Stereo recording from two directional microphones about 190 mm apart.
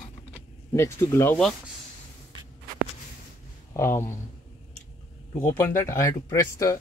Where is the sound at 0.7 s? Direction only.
15° left (ahead or behind).